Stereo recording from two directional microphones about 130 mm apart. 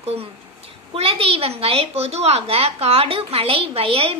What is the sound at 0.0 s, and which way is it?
A woman's voice, 50° right (ahead or behind).